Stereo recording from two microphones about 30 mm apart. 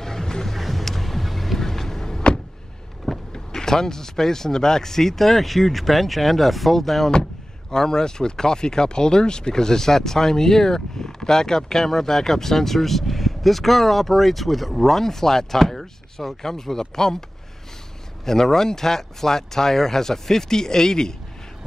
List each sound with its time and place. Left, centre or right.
0.0 s music: centre
0.5 s vehicle: centre
3.3 s speech: centre
7.7 s speech: left
18.2 s speech: centre